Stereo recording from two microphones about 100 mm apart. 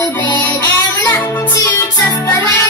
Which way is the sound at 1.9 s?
30° left (ahead or behind).